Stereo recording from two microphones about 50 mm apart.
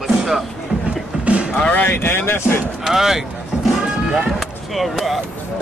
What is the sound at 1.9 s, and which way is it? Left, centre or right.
Speech, left.